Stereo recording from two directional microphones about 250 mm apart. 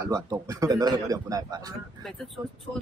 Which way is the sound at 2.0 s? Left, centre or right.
Centre.